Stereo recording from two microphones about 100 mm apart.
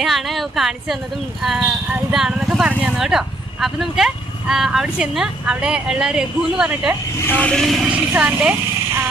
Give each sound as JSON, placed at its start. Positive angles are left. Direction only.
{"t": 0.0, "sound": "a sound", "side_deg": 0}
{"t": 1.6, "sound": "speech", "side_deg": -10}
{"t": 7.2, "sound": "speech", "side_deg": 20}
{"t": 7.5, "sound": "speech", "side_deg": 0}
{"t": 7.9, "sound": "speech", "side_deg": -15}